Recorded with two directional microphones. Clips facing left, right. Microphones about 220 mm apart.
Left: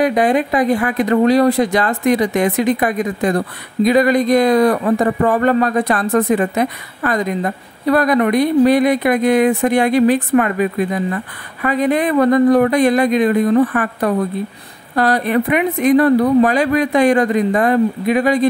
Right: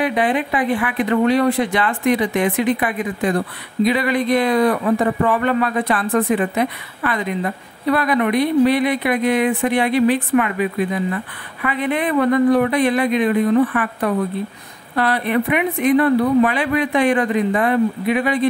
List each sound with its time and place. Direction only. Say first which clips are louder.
0.0 s speech: left 4 dB; 40° left (ahead or behind)